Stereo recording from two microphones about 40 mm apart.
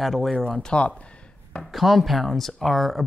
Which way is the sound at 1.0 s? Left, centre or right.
Left.